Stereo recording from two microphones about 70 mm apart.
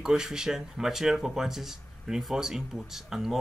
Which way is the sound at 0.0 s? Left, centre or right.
Centre.